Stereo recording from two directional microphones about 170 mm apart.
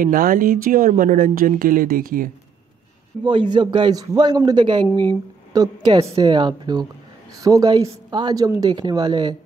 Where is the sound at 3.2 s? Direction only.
30° right (ahead or behind).